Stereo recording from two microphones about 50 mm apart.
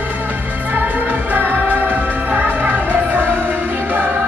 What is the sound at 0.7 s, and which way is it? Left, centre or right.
Music, right.